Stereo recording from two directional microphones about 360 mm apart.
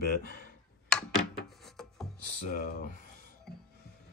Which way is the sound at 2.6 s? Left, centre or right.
Left.